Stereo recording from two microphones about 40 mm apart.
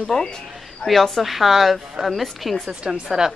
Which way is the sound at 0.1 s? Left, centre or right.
Centre.